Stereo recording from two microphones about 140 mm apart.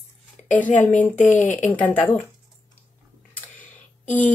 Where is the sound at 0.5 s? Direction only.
10° left (ahead or behind).